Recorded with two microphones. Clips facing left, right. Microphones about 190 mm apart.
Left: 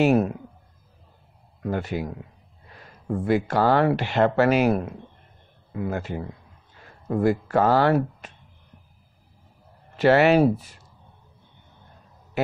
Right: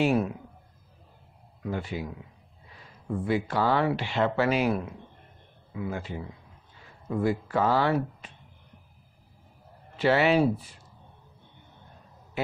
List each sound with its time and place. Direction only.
0.0 s speech: 45° left (ahead or behind)
1.6 s speech: 65° left (ahead or behind)
2.7 s speech: 50° left (ahead or behind)
4.4 s speech: 50° left (ahead or behind)
9.9 s speech: 50° left (ahead or behind)
10.4 s speech: 45° left (ahead or behind)